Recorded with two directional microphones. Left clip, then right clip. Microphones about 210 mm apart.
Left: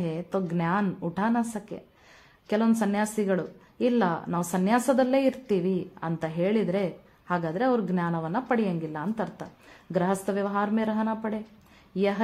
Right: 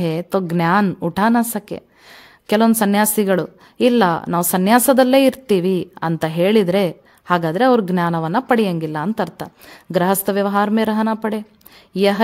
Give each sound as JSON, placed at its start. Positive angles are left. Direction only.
{"t": 0.0, "sound": "a woman's voice", "side_deg": -50}